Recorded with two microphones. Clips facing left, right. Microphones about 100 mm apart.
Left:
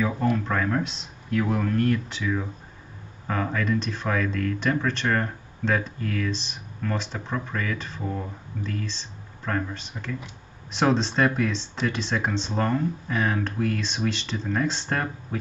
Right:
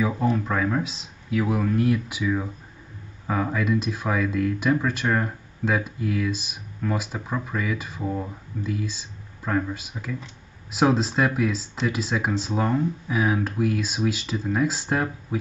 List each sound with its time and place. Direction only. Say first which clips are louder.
0.4 s speech: right 1 dB; 5° right (ahead or behind)